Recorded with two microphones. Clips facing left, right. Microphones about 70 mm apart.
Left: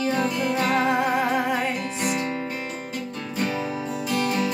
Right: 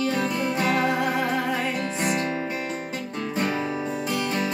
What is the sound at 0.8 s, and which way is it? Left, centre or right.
Music, centre.